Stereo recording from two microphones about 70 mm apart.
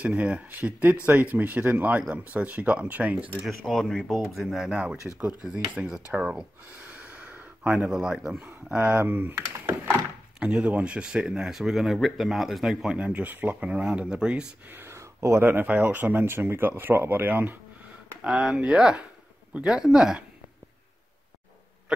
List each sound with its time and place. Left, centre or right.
0.0 s speech: centre
3.3 s speech: centre
6.9 s a sound: centre
7.8 s speech: centre
12.9 s speech: centre
14.7 s a sound: right
15.0 s a sound: right
15.4 s speech: right
18.2 s speech: centre